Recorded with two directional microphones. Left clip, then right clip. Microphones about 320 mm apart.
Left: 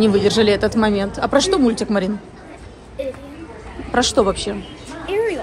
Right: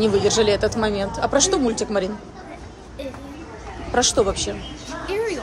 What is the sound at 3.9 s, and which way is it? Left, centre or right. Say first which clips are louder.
Speech: left 3 dB; centre.